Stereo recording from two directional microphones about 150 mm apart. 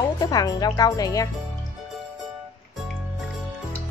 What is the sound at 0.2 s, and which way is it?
A woman's voice, 25° left (ahead or behind).